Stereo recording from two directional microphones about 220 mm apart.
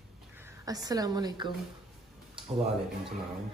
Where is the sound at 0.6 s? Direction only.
15° right (ahead or behind).